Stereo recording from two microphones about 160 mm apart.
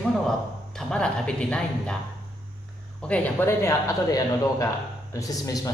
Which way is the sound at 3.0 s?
10° left (ahead or behind).